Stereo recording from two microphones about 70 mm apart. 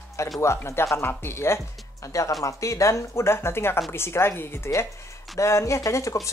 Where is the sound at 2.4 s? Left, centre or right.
Left.